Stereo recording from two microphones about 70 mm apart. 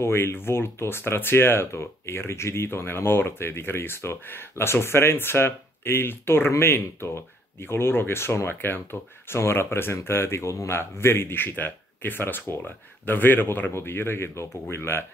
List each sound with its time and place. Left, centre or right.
0.0 s speech: left